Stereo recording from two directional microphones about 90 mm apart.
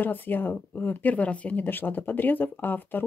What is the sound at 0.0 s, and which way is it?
Speech, 20° left (ahead or behind).